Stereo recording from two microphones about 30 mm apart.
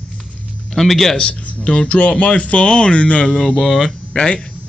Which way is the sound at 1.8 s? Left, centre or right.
Left.